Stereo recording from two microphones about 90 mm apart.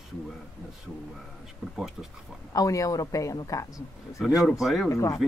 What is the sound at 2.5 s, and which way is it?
Speech, 40° left (ahead or behind).